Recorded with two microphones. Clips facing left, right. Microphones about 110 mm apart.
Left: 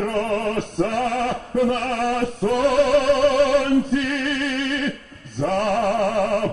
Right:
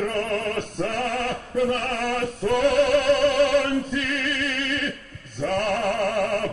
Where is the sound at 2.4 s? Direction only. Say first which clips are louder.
Left 1 dB; 15° left (ahead or behind).